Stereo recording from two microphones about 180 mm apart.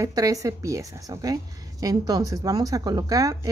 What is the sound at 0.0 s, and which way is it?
A woman's voice, 20° right (ahead or behind).